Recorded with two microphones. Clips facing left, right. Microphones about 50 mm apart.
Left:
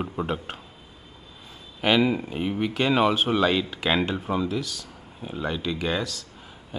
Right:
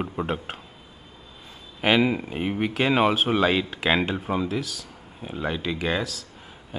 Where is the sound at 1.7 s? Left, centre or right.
Centre.